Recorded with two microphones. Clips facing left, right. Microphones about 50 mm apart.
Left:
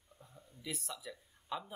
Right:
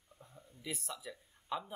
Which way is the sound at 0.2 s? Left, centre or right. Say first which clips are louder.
Right 1 dB; right.